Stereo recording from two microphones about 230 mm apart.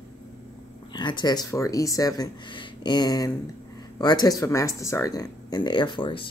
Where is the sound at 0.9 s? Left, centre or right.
Centre.